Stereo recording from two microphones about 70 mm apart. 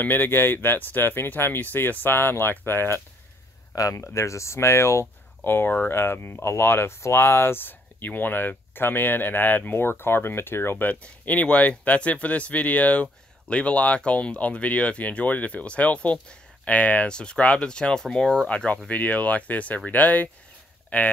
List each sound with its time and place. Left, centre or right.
0.0 s speech: left
3.7 s speech: left; by 21.1 s centre